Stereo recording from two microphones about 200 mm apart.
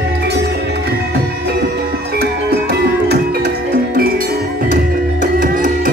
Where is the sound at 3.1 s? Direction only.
50° right (ahead or behind).